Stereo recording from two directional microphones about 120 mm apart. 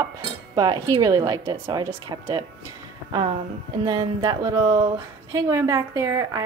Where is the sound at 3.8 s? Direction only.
35° right (ahead or behind).